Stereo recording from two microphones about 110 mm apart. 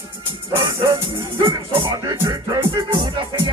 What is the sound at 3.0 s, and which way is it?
Music, 50° right (ahead or behind).